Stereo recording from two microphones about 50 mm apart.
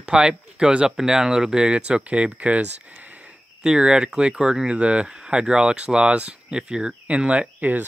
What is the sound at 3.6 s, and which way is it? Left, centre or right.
Speech, centre.